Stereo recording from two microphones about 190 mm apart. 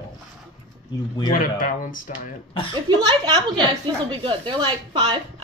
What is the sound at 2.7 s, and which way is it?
A woman's voice, 25° right (ahead or behind).